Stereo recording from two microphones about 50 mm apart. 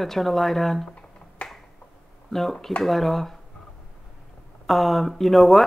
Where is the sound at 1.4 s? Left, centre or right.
Left.